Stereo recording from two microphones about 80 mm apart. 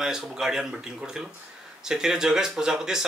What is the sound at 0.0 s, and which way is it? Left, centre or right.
Speech, centre.